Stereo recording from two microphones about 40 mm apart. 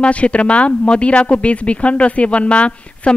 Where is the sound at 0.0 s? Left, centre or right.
Left.